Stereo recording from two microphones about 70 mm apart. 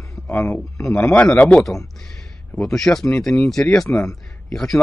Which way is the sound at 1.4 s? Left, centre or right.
Centre.